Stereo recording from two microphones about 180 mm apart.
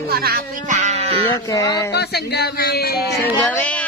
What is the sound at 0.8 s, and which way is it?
Sheep, 35° right (ahead or behind).